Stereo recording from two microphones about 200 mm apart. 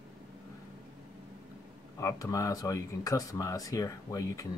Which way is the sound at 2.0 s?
15° left (ahead or behind).